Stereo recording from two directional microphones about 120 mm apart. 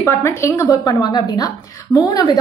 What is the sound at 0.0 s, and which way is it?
A woman's voice, 20° left (ahead or behind).